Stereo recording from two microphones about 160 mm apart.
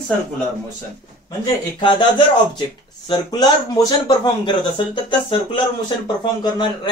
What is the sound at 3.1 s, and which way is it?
Speech, 25° left (ahead or behind).